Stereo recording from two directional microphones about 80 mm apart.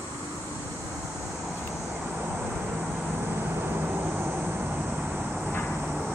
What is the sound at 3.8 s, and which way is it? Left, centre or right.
Vehicle, right.